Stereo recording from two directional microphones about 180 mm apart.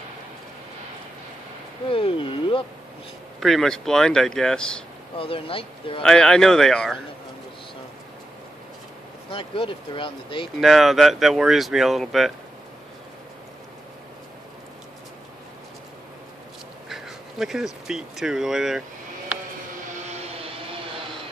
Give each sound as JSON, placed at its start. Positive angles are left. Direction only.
{"t": 1.9, "sound": "a sound", "side_deg": 30}
{"t": 3.3, "sound": "speech", "side_deg": 0}
{"t": 5.1, "sound": "speech", "side_deg": 30}
{"t": 6.0, "sound": "speech", "side_deg": 5}
{"t": 9.3, "sound": "speech", "side_deg": 30}
{"t": 10.6, "sound": "speech", "side_deg": 0}
{"t": 16.9, "sound": "a sound", "side_deg": 0}
{"t": 17.8, "sound": "speech", "side_deg": -5}
{"t": 19.9, "sound": "vehicle", "side_deg": -30}